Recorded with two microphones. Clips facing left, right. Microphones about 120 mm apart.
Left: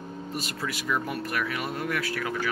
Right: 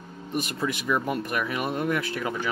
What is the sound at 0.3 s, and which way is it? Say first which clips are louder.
Speech: right 6 dB; 20° right (ahead or behind).